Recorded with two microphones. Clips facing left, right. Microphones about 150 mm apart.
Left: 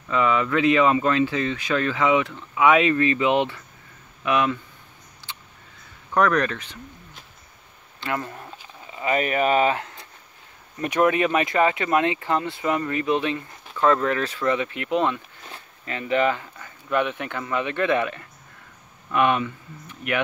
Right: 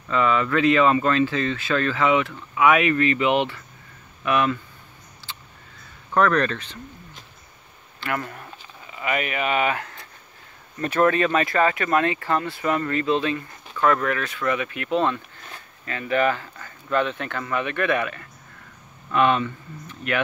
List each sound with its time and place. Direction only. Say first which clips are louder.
0.1 s speech: even; 15° left (ahead or behind)
5.2 s a sound: even; 20° left (ahead or behind)
6.1 s speech: right 1 dB; 10° left (ahead or behind)
8.0 s speech: even; 20° left (ahead or behind)
8.9 s speech: left 3 dB; 30° left (ahead or behind)
10.8 s speech: even; 15° left (ahead or behind)